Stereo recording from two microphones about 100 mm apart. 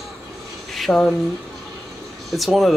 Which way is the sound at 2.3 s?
Centre (ahead or behind).